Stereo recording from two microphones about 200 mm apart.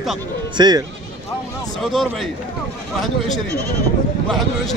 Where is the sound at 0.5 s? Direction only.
20° right (ahead or behind).